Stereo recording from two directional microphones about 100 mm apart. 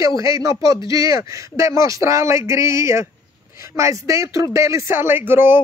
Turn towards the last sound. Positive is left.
turn(degrees=-20)  # may be behind; listen again after turning